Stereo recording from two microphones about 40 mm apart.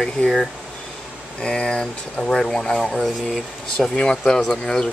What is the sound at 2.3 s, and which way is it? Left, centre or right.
Speech, centre.